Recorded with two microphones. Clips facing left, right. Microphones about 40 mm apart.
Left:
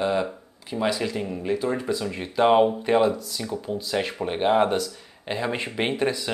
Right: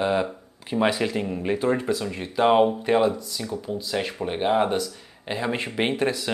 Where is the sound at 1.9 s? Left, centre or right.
Centre.